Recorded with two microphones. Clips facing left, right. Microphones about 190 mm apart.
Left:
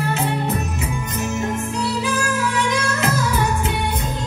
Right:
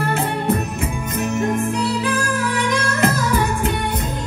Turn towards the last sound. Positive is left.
turn(degrees=-55)  # may be behind; listen again after turning